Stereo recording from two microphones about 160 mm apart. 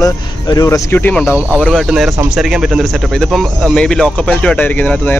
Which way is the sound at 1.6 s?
Centre (ahead or behind).